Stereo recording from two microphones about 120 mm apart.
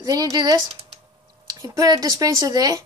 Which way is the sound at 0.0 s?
30° right (ahead or behind).